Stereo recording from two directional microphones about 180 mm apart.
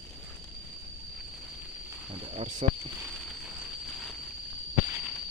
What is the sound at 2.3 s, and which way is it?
Speech, 45° right (ahead or behind).